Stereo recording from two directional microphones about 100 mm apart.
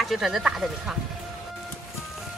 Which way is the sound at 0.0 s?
Centre (ahead or behind).